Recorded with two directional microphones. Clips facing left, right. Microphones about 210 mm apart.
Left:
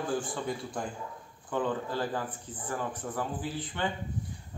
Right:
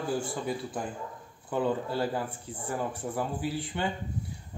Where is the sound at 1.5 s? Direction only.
10° right (ahead or behind).